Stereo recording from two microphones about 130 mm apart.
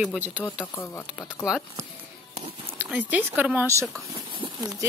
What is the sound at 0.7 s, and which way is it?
Speech, 20° left (ahead or behind).